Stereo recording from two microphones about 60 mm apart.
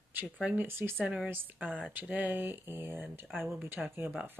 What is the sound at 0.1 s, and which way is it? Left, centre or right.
Speech, right.